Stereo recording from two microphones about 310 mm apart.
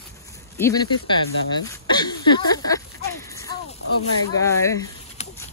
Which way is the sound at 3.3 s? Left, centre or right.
Centre.